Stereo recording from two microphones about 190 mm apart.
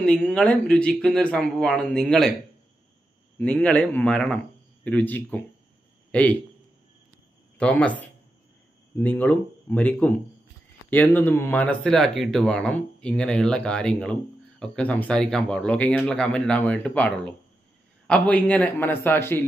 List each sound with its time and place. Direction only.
0.0 s speech: 5° left (ahead or behind)
3.3 s speech: 5° left (ahead or behind)
7.5 s speech: 5° left (ahead or behind)
8.9 s speech: 5° left (ahead or behind)